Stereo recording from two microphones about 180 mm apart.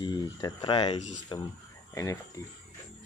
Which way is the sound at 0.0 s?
20° left (ahead or behind).